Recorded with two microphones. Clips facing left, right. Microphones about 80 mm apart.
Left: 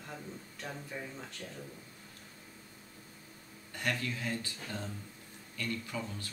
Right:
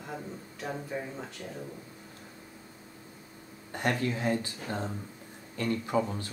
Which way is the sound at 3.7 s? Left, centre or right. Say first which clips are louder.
Right 6 dB; right.